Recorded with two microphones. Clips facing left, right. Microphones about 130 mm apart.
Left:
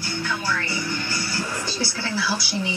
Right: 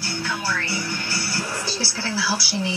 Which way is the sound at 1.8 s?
5° right (ahead or behind).